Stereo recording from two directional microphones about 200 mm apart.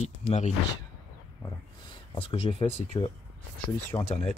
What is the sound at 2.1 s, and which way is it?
Speech, 30° left (ahead or behind).